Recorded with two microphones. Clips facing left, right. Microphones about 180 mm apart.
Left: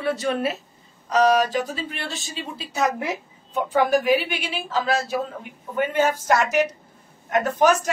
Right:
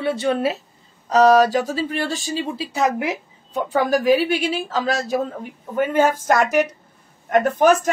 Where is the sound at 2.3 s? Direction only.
30° right (ahead or behind).